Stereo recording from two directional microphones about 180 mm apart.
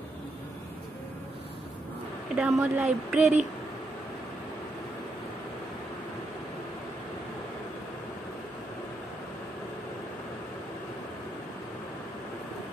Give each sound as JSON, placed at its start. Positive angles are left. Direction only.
{"t": 2.3, "sound": "speech", "side_deg": -5}